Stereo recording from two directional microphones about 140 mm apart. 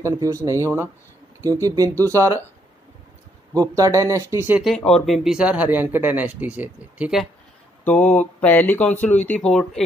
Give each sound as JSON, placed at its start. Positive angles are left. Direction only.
{"t": 0.0, "sound": "speech", "side_deg": -20}
{"t": 3.5, "sound": "speech", "side_deg": -25}
{"t": 4.6, "sound": "speech", "side_deg": 0}
{"t": 7.8, "sound": "speech", "side_deg": 10}